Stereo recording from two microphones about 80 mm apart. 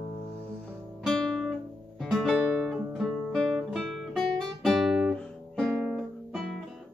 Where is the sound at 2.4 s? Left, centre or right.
Centre.